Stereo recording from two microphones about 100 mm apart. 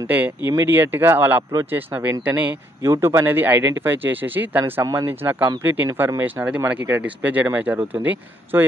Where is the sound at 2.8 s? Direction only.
25° right (ahead or behind).